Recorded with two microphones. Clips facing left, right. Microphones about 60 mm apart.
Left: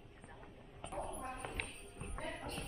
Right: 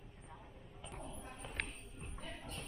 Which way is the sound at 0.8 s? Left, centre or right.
Left.